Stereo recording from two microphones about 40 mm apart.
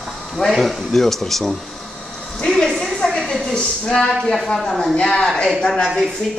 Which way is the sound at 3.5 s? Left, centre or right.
Centre.